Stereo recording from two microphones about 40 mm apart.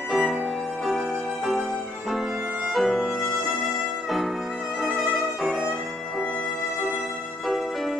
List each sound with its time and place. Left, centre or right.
0.1 s music: centre
2.7 s music: centre
4.8 s violin: centre